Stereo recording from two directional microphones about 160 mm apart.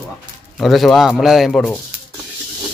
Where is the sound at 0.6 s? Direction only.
Centre (ahead or behind).